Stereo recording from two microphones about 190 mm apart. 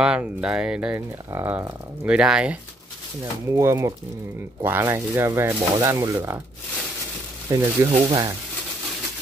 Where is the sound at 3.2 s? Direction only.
15° right (ahead or behind).